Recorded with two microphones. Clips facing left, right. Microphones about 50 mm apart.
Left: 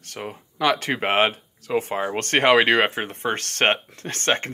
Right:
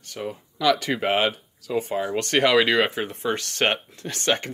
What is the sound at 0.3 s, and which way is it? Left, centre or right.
Speech, left.